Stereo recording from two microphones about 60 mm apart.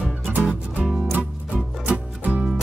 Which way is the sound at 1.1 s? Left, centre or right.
Right.